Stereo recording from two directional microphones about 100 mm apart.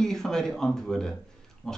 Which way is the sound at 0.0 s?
5° left (ahead or behind).